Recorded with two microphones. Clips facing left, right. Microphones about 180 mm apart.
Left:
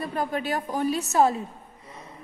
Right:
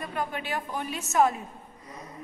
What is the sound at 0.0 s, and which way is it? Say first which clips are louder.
A woman's voice: left 5 dB; 35° left (ahead or behind).